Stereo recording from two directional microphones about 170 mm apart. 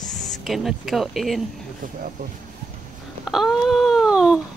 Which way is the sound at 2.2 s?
50° right (ahead or behind).